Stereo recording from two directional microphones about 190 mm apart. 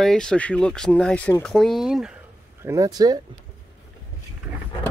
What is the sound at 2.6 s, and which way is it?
Speech, 15° right (ahead or behind).